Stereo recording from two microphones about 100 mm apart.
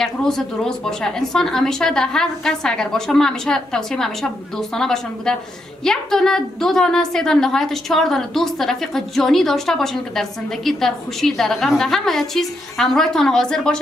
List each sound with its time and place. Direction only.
0.0 s a woman's voice: 5° left (ahead or behind)